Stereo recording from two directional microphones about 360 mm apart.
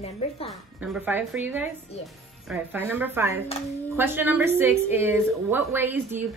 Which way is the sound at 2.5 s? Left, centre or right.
Centre.